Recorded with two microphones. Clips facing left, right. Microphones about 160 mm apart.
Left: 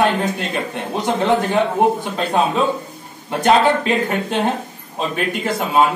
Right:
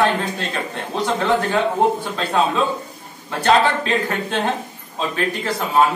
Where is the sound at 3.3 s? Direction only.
15° left (ahead or behind).